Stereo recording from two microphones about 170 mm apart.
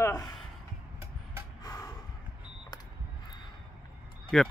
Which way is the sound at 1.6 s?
20° left (ahead or behind).